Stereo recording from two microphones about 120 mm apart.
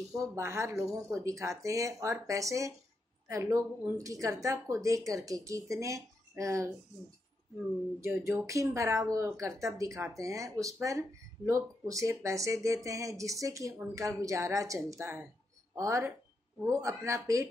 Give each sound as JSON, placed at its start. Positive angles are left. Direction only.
{"t": 0.2, "sound": "speech", "side_deg": -25}
{"t": 8.0, "sound": "speech", "side_deg": -25}